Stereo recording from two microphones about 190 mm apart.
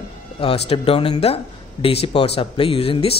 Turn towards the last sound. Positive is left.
turn(degrees=30)  # may be behind; listen again after turning